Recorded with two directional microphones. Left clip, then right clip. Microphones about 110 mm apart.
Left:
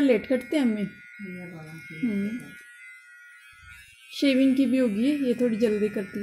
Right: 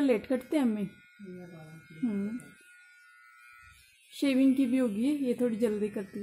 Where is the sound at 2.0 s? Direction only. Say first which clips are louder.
Left 4 dB; 30° right (ahead or behind).